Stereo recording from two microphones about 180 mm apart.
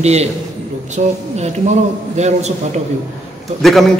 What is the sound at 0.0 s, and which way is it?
A woman's voice, 35° right (ahead or behind).